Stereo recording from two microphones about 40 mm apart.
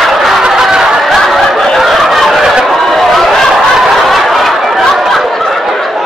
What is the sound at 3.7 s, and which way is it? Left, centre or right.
Snicker, centre.